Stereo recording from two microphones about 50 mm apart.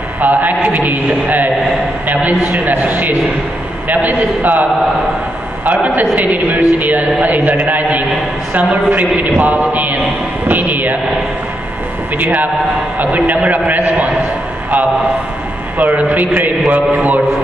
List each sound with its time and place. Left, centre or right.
0.2 s a man's voice: right
5.7 s a man's voice: right
12.2 s a man's voice: right
15.8 s a man's voice: right